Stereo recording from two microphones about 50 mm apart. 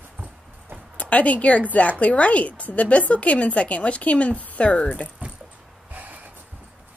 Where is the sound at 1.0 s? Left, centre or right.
Left.